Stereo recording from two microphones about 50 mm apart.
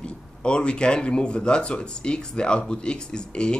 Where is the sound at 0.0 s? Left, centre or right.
Centre.